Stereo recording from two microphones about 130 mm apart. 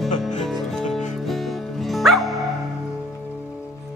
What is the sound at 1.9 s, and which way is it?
Music, centre (ahead or behind).